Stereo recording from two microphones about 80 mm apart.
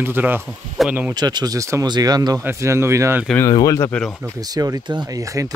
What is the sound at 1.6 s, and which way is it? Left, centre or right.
Speech, right.